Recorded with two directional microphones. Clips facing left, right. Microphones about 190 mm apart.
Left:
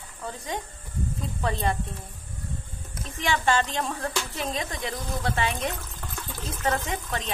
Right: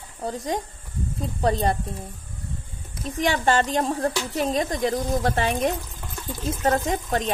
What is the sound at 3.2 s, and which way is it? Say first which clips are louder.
Speech: right 3 dB; 40° right (ahead or behind).